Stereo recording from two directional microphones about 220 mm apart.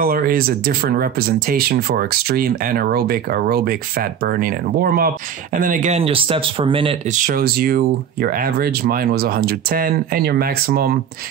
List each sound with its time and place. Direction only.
0.0 s speech: 40° right (ahead or behind); by 7.2 s 25° right (ahead or behind)
7.2 s speech: 40° right (ahead or behind)